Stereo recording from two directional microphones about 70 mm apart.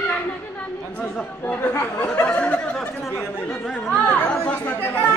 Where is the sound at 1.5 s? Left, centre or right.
Left.